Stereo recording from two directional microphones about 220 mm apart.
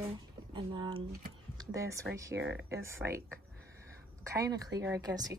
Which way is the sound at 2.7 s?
10° right (ahead or behind).